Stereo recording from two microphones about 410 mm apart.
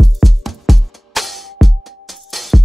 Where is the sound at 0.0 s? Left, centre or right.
Centre.